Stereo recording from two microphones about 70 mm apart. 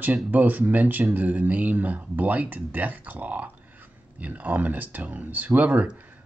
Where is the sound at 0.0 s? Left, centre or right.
Right.